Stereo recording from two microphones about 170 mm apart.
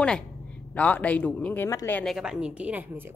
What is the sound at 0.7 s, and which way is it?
Speech, 10° left (ahead or behind).